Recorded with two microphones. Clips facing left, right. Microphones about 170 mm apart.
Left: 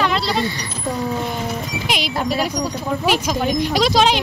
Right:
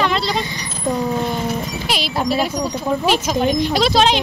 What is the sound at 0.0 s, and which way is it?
Vehicle, 5° left (ahead or behind).